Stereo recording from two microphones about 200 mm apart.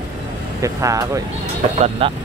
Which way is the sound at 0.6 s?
15° right (ahead or behind).